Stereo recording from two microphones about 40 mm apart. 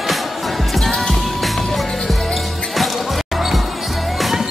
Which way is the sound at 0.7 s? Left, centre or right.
Centre.